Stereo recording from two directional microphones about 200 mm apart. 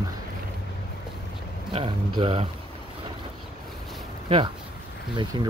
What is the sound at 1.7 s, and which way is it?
Speech, 25° right (ahead or behind).